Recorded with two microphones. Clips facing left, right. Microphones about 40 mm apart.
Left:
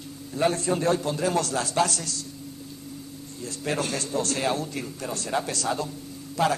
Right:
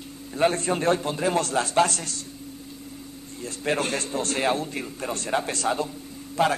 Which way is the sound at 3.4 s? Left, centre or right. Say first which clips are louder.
Right 3 dB; right.